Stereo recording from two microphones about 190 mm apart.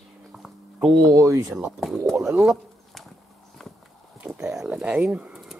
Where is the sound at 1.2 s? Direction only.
15° right (ahead or behind).